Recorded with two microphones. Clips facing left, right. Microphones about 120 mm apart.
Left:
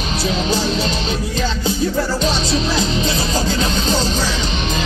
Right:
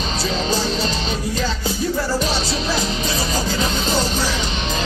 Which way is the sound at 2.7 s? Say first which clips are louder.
Left 3 dB; 25° left (ahead or behind).